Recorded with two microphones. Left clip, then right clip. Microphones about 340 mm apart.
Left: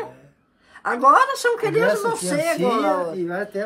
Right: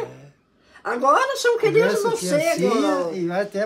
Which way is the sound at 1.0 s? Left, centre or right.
Left.